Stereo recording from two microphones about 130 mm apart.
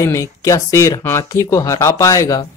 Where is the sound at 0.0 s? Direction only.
25° left (ahead or behind).